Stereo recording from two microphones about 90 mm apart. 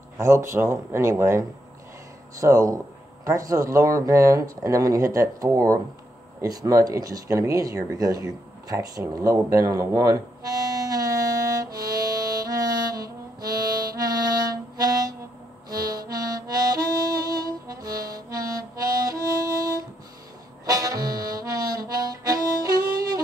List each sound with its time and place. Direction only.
0.2 s speech: 30° right (ahead or behind)
9.2 s harmonica: 40° right (ahead or behind)
13.4 s music: 45° right (ahead or behind)
15.7 s harmonica: 45° right (ahead or behind)